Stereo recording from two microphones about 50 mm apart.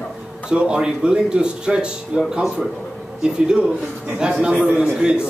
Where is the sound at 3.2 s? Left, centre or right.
Centre.